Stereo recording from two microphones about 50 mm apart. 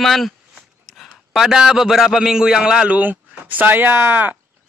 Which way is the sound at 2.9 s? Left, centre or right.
Right.